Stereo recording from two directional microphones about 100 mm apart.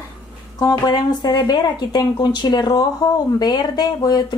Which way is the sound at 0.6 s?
45° left (ahead or behind).